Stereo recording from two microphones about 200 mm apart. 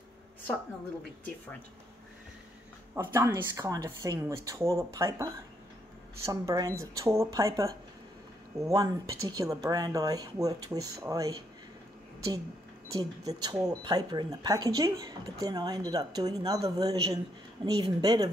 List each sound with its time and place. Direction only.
2.9 s speech: 10° right (ahead or behind)
12.9 s speech: 20° right (ahead or behind)